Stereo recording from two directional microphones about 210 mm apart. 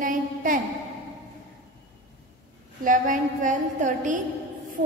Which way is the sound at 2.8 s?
40° right (ahead or behind).